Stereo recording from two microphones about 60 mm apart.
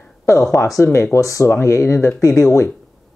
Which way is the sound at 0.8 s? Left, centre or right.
Left.